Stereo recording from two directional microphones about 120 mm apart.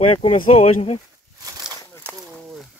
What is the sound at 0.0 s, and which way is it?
Speech, 55° left (ahead or behind).